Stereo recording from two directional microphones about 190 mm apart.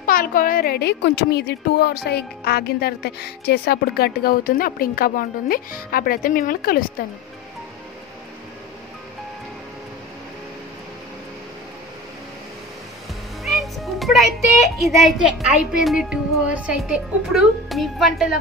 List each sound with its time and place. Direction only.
0.0 s a woman's voice: 50° left (ahead or behind)
13.4 s music: centre (ahead or behind)
14.8 s speech: centre (ahead or behind)